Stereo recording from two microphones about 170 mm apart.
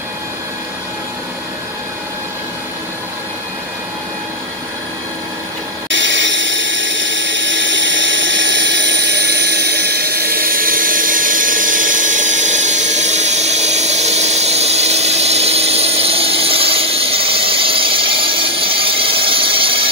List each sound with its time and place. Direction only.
5.9 s dental drill: 90° right; by 19.9 s 30° right (ahead or behind)